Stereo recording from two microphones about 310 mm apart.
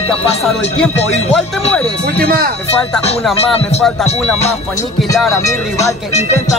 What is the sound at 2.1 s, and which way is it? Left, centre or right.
Speech, right.